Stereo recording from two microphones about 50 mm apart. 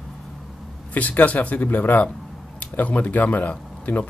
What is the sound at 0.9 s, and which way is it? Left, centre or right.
A man's voice, left.